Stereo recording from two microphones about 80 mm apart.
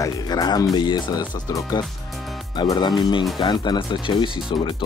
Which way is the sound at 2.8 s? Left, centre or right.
Left.